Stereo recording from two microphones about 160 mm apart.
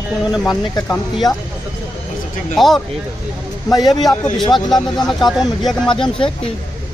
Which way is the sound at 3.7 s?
25° left (ahead or behind).